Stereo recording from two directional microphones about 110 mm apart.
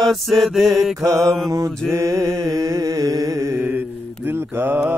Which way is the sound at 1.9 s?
30° right (ahead or behind).